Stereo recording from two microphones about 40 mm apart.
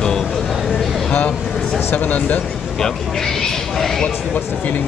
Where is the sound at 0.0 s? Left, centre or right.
Centre.